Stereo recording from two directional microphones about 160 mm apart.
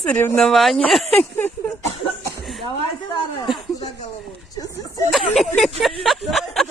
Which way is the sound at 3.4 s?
30° left (ahead or behind).